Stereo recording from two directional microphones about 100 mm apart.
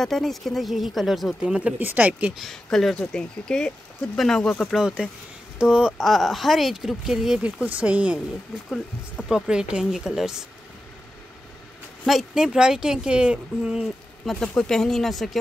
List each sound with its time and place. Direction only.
0.0 s speech: 5° left (ahead or behind); by 2.3 s 15° right (ahead or behind)
2.3 s speech: centre (ahead or behind)
4.7 s speech: 5° right (ahead or behind)
8.6 s speech: 5° left (ahead or behind)
9.5 s speech: 10° right (ahead or behind)
12.1 s speech: 5° right (ahead or behind)
14.3 s speech: 5° left (ahead or behind)